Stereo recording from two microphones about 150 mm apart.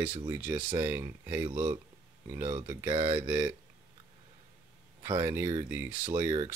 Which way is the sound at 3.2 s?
15° right (ahead or behind).